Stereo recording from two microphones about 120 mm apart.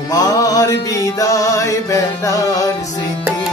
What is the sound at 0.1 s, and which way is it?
Mantra, 30° left (ahead or behind).